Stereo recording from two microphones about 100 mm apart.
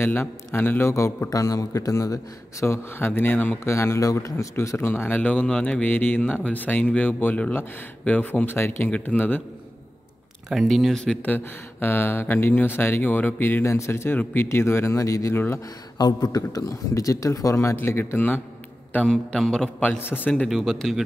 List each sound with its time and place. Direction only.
0.0 s a man's voice: 20° left (ahead or behind)
10.5 s speech: centre (ahead or behind)
11.2 s a man's voice: 20° left (ahead or behind)
15.3 s a man's voice: 25° left (ahead or behind)
16.0 s speech: 40° left (ahead or behind); by 18.4 s 20° left (ahead or behind)
18.9 s a man's voice: 10° left (ahead or behind)